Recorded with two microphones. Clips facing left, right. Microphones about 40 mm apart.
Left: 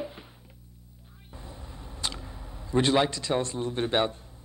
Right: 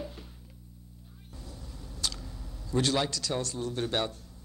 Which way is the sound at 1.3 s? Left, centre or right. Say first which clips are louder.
Left 3 dB; left.